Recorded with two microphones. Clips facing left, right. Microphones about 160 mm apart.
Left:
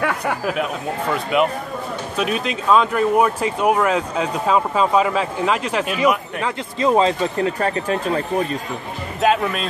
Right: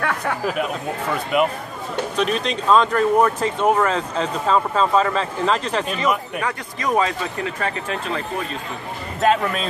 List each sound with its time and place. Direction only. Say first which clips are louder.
0.0 s speech: left 1 dB; 5° left (ahead or behind)
2.1 s speech: even; 5° left (ahead or behind)
6.4 s speech: left 5 dB; 25° left (ahead or behind)
9.2 s speech: even; 5° left (ahead or behind)